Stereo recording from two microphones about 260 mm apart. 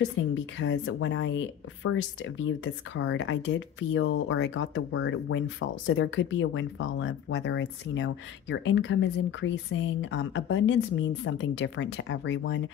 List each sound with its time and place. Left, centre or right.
0.3 s speech: left